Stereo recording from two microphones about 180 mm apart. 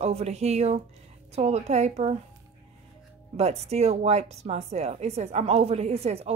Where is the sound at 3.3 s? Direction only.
35° right (ahead or behind).